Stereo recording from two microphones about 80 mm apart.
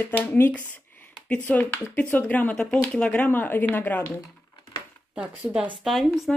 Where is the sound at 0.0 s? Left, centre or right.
Centre.